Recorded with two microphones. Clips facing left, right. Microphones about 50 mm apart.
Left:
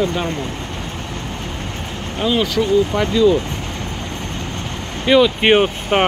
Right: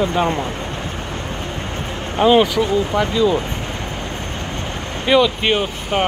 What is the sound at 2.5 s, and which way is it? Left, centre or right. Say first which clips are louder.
Speech: left 1 dB; centre.